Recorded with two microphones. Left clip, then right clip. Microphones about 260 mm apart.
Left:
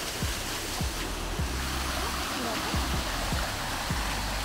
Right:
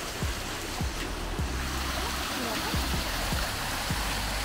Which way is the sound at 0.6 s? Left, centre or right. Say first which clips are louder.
Left 1 dB; left.